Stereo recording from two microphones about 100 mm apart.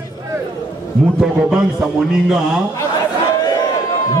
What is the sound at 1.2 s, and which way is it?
A man's voice, 5° right (ahead or behind).